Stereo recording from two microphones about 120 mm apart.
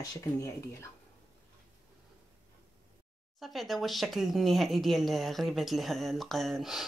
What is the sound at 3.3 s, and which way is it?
Speech, centre (ahead or behind).